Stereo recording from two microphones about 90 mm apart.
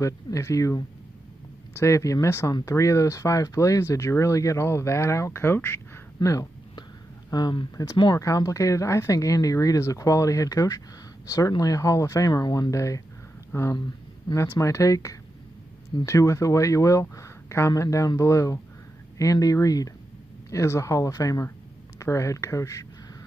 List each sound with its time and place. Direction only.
0.0 s speech: 35° left (ahead or behind)
6.2 s speech: 55° left (ahead or behind); by 22.8 s 35° left (ahead or behind)